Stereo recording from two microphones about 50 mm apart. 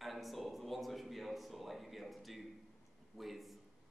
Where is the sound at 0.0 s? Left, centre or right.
Centre.